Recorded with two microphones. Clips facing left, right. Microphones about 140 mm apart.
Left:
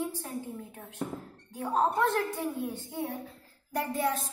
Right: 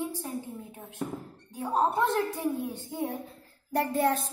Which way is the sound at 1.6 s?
10° right (ahead or behind).